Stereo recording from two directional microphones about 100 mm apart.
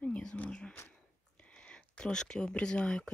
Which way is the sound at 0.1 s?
5° left (ahead or behind).